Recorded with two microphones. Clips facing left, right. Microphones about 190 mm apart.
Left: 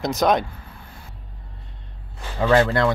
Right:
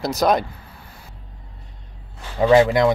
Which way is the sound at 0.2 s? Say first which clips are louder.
Right 1 dB; 5° right (ahead or behind).